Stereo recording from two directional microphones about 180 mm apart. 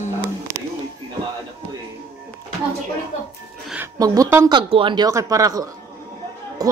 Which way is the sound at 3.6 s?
10° right (ahead or behind).